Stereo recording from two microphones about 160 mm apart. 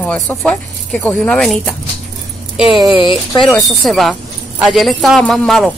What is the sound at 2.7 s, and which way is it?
Speech, 25° right (ahead or behind).